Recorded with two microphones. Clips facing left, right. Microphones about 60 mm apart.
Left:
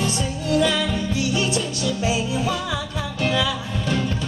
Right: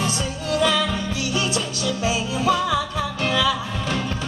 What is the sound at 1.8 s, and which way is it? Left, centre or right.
Music, left.